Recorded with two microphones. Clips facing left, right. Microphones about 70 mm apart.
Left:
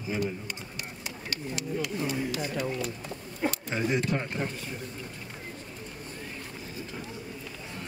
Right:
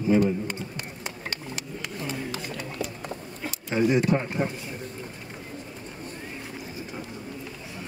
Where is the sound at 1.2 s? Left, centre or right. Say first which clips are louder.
Left 4 dB; right.